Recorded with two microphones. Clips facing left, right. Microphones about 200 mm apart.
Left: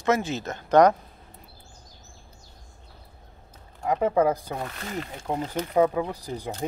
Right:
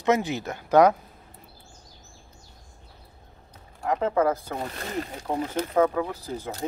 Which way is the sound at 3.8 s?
15° left (ahead or behind).